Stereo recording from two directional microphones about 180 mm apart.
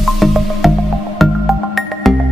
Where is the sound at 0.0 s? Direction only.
Centre (ahead or behind).